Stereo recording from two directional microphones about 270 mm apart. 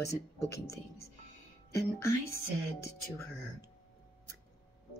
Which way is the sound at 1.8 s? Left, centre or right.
Centre.